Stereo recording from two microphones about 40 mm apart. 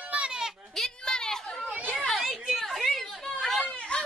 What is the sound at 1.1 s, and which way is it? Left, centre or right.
Chatter, centre.